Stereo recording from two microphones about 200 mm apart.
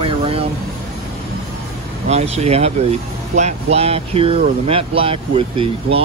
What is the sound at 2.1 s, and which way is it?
Speech, 30° right (ahead or behind).